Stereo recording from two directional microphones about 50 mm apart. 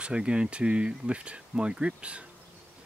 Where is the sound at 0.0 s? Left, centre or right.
Centre.